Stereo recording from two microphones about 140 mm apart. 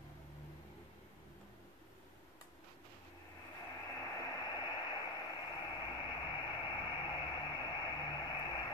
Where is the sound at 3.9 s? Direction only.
25° left (ahead or behind).